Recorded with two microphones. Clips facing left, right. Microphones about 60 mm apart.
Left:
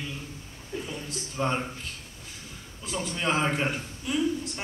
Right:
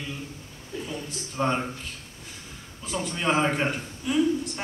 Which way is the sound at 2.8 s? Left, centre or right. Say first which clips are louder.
Right 2 dB; centre.